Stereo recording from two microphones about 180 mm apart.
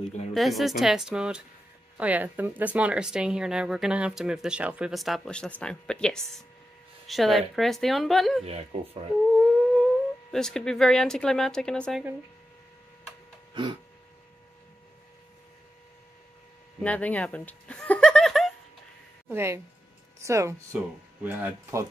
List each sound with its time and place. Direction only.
0.3 s speech: centre (ahead or behind)
13.5 s a sound: 25° right (ahead or behind)
16.8 s speech: 10° left (ahead or behind)
19.2 s speech: 15° right (ahead or behind)